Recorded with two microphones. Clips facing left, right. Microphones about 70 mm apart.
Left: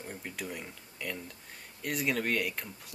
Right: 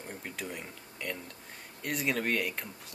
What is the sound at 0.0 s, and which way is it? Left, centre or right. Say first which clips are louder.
Speech: even; centre.